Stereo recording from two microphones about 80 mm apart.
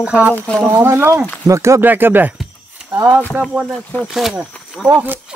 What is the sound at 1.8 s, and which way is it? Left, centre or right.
Speech, right.